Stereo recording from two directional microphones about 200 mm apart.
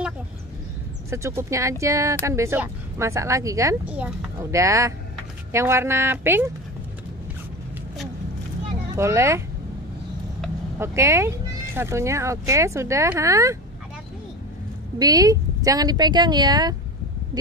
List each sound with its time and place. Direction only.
1.1 s speech: 15° right (ahead or behind)
8.9 s speech: 15° right (ahead or behind)
10.8 s speech: 15° right (ahead or behind)
15.0 s speech: 20° right (ahead or behind)